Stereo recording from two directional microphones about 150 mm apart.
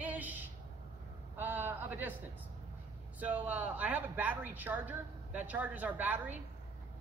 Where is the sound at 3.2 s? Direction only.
10° right (ahead or behind).